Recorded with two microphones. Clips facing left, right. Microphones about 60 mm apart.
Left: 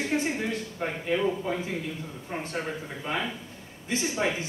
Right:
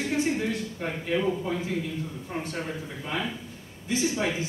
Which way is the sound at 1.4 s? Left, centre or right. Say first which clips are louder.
Right 1 dB; left.